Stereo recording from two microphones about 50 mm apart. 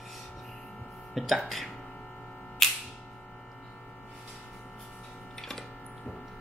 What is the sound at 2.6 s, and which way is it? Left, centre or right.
Music, centre.